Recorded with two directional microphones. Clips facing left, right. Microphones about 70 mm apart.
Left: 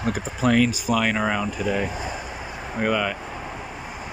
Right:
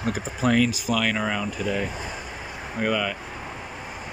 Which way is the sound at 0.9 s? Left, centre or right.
Centre.